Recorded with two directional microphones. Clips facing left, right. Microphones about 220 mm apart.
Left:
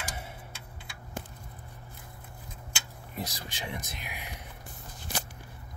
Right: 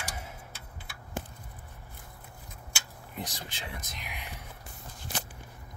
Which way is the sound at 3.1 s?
10° left (ahead or behind).